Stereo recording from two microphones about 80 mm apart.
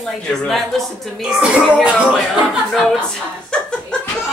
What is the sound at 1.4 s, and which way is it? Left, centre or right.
Music, centre.